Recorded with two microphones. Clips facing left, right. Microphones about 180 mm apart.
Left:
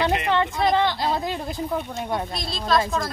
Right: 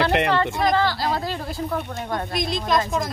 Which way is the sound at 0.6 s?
20° left (ahead or behind).